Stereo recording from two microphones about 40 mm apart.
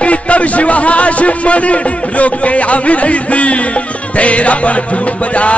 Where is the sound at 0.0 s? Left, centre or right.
Left.